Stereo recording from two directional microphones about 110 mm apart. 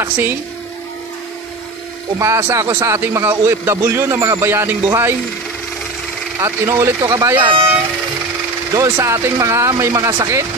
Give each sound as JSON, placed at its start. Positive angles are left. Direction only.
{"t": 0.0, "sound": "a man's voice", "side_deg": -20}
{"t": 2.1, "sound": "a man's voice", "side_deg": -25}
{"t": 6.4, "sound": "a man's voice", "side_deg": -25}
{"t": 8.7, "sound": "a man's voice", "side_deg": -30}